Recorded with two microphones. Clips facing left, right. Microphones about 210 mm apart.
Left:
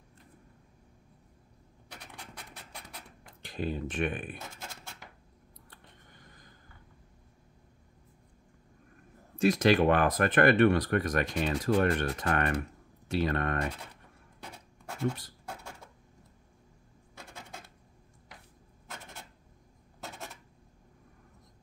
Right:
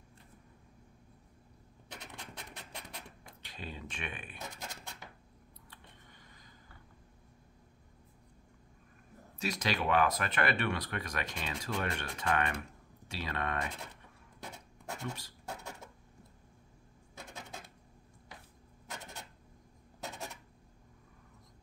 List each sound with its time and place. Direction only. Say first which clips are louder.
2.0 s rub: even; 20° right (ahead or behind)
3.4 s speech: left 11 dB; 45° left (ahead or behind)
5.7 s a sound: left 1 dB; 45° left (ahead or behind)
9.4 s speech: left 11 dB; 50° left (ahead or behind)